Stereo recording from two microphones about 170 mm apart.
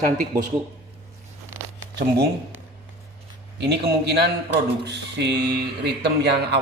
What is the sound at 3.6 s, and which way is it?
Speech, 80° right.